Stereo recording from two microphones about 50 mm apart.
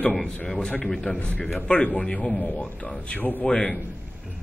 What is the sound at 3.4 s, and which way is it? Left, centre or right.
Speech, centre.